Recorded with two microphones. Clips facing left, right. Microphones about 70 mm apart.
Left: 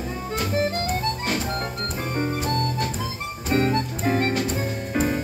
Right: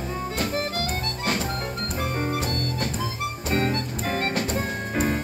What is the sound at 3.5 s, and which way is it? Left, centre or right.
Music, centre.